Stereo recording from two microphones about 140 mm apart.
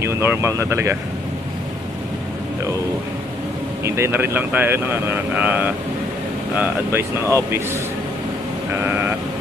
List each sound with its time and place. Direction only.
0.0 s speech: 20° right (ahead or behind)
3.8 s speech: 20° right (ahead or behind)
8.8 s speech: 15° right (ahead or behind)